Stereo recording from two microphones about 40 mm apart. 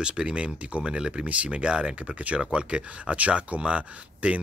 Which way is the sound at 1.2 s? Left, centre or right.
Right.